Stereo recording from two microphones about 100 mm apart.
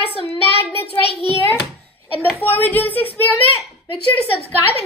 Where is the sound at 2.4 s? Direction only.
20° left (ahead or behind).